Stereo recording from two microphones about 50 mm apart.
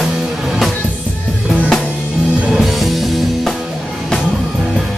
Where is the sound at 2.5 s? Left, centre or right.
Centre.